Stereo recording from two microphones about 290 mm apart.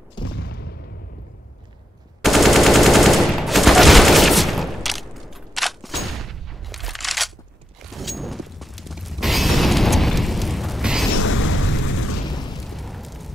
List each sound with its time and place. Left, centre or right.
0.4 s a sound: left
2.2 s machine gun: centre
7.8 s a sound: centre
11.1 s boom: left
12.3 s boom: centre
12.5 s explosion: centre